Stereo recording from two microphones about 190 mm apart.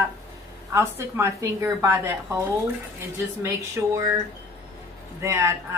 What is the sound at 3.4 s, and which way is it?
Speech, 15° right (ahead or behind).